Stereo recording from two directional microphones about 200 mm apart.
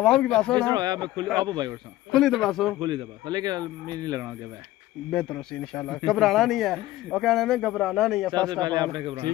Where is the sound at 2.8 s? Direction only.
20° right (ahead or behind).